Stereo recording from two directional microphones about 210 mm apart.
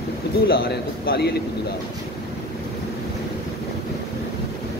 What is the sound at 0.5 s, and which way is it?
Speech, 50° left (ahead or behind).